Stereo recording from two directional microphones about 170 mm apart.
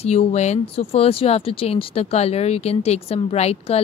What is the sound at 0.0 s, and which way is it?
Speech, 40° left (ahead or behind).